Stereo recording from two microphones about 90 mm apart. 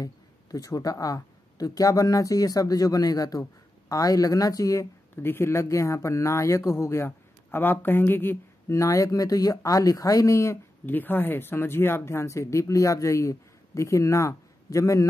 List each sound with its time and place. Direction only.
0.0 s speech: 40° left (ahead or behind)
5.1 s speech: 25° left (ahead or behind)
8.7 s speech: 35° left (ahead or behind)
10.9 s speech: 20° left (ahead or behind)